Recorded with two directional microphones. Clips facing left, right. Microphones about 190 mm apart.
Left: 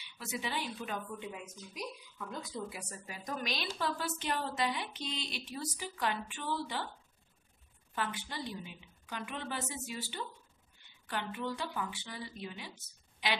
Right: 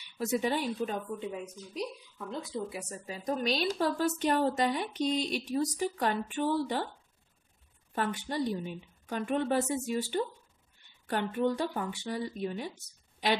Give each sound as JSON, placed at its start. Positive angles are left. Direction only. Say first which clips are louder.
{"t": 0.2, "sound": "a woman's voice", "louder": "right 9 dB", "side_deg": -45}
{"t": 7.9, "sound": "a woman's voice", "louder": "right 6 dB", "side_deg": -40}